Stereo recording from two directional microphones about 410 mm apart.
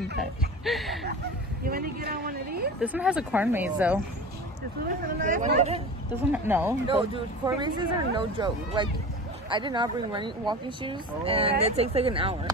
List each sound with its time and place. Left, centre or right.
0.2 s speech: centre
1.6 s speech: right
2.8 s speech: centre
5.0 s speech: centre
6.3 s speech: centre